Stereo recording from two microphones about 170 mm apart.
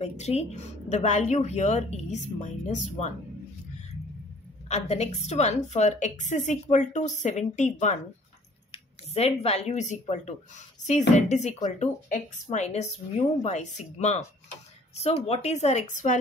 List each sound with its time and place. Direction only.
0.0 s a woman's voice: 40° left (ahead or behind)
4.6 s a woman's voice: 40° left (ahead or behind)